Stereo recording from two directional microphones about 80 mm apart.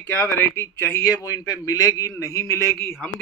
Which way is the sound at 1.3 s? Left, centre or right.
Left.